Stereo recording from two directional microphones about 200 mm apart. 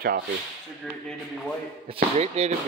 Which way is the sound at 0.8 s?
Centre (ahead or behind).